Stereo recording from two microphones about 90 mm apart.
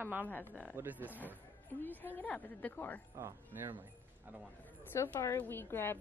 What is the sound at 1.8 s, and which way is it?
A woman's voice, 20° left (ahead or behind).